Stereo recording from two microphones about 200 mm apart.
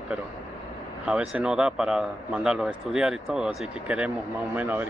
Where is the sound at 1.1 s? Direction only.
5° right (ahead or behind).